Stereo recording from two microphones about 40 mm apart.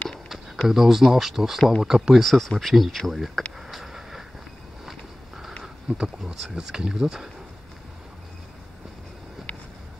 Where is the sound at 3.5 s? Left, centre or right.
Centre.